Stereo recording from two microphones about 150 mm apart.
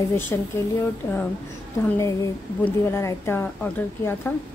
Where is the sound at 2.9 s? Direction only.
20° left (ahead or behind).